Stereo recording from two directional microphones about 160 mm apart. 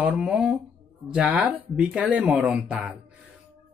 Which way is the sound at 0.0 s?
5° right (ahead or behind).